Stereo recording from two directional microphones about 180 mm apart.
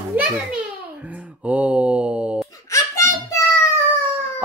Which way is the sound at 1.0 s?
10° right (ahead or behind).